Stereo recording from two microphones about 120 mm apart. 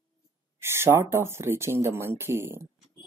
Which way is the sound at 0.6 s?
20° right (ahead or behind).